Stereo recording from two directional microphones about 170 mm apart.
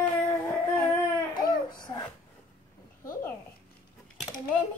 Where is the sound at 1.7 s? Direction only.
25° left (ahead or behind).